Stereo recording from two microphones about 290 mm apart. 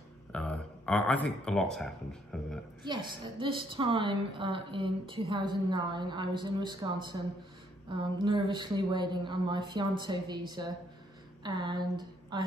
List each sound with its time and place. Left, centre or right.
0.3 s speech: centre
2.8 s a woman's voice: centre